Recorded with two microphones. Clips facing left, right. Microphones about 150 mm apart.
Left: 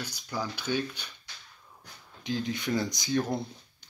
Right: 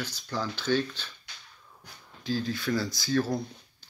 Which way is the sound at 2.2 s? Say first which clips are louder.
Right 1 dB; 20° left (ahead or behind).